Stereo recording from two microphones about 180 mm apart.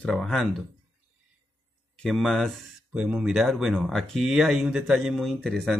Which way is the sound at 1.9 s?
5° left (ahead or behind).